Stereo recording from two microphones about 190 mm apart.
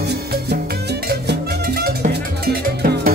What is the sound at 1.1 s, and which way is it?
Music, 55° right (ahead or behind).